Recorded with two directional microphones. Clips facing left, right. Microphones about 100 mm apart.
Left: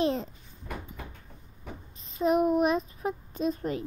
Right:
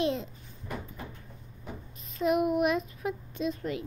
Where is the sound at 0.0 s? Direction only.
40° left (ahead or behind).